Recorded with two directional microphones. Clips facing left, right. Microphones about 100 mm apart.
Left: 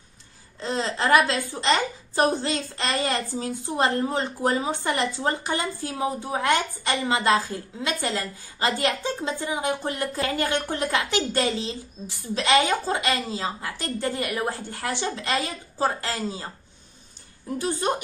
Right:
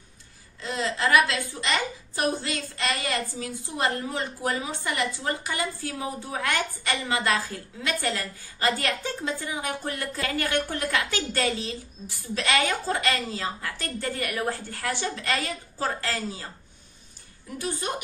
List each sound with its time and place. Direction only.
0.6 s a woman's voice: 30° left (ahead or behind)
17.6 s a woman's voice: 35° left (ahead or behind)